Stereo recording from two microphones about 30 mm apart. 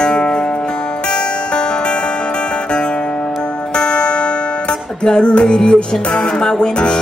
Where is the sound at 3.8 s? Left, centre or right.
Left.